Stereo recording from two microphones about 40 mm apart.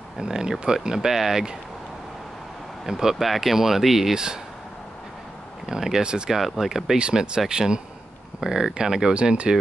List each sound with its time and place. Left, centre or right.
0.2 s speech: centre
2.9 s speech: centre
5.7 s speech: centre
6.0 s speech: right
6.3 s speech: centre
7.2 s speech: centre